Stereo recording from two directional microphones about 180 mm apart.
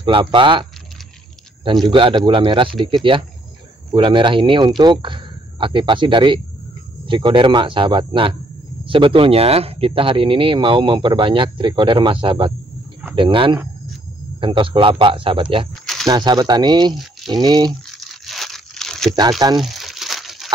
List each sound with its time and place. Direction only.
0.0 s speech: 25° right (ahead or behind)
1.9 s speech: 25° right (ahead or behind)
15.7 s a sound: centre (ahead or behind)
16.1 s speech: 25° right (ahead or behind)
17.9 s tearing: centre (ahead or behind)
19.6 s crumpling: centre (ahead or behind)